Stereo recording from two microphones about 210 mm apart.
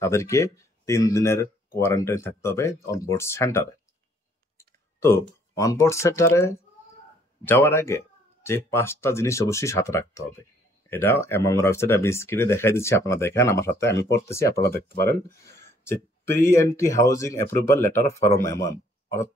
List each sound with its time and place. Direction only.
0.0 s speech: 15° left (ahead or behind)
14.0 s speech: 55° left (ahead or behind)
15.4 s speech: 15° left (ahead or behind)